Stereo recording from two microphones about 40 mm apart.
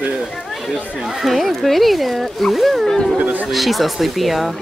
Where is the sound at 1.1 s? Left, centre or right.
Centre.